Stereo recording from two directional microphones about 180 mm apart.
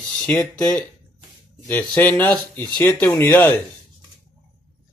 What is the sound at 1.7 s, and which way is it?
Speech, 10° left (ahead or behind).